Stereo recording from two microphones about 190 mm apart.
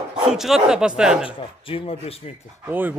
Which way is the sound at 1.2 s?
30° left (ahead or behind).